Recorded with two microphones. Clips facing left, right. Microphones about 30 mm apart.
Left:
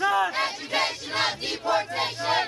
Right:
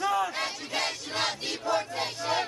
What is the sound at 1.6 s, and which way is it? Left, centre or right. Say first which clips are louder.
Battle cry: left 4 dB; left.